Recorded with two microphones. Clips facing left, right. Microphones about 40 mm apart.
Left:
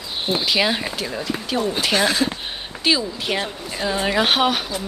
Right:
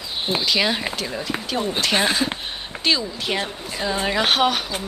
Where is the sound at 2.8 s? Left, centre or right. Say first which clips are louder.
Left 2 dB; centre.